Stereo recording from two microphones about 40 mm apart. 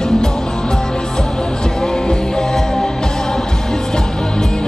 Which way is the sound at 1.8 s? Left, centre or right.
Centre.